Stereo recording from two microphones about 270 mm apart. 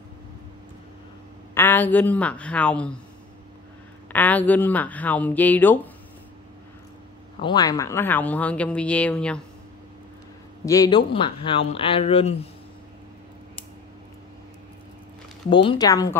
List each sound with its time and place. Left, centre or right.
1.5 s speech: centre
4.1 s speech: centre
7.3 s speech: centre
10.6 s speech: centre
15.5 s speech: centre